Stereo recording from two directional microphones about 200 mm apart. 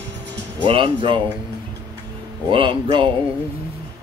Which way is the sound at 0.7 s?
25° right (ahead or behind).